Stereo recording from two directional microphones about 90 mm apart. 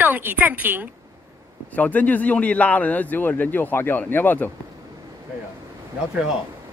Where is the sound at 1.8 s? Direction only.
15° left (ahead or behind).